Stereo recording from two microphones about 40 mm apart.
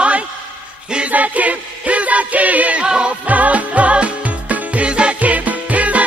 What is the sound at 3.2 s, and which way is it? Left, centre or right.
Music, right.